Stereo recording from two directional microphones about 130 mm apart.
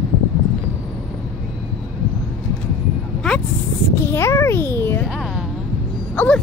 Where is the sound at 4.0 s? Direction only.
20° left (ahead or behind).